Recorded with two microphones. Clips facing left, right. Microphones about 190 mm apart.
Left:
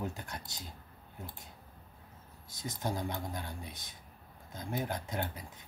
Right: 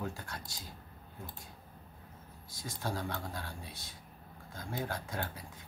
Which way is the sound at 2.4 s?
20° left (ahead or behind).